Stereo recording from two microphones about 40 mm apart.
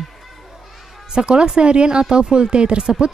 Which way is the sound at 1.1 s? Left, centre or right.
Right.